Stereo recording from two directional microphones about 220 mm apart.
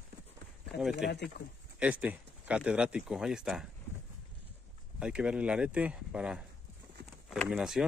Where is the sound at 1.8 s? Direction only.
5° right (ahead or behind).